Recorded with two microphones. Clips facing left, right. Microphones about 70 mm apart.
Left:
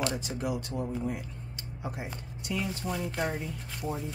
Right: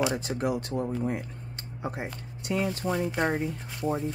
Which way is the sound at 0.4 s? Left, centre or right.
Right.